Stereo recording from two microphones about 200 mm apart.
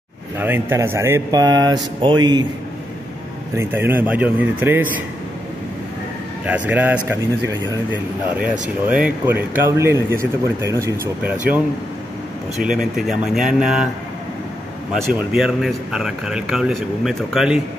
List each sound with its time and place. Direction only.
0.4 s speech: 10° right (ahead or behind)
3.5 s a man's voice: 10° right (ahead or behind)
6.4 s a man's voice: 10° right (ahead or behind)
15.1 s a man's voice: centre (ahead or behind)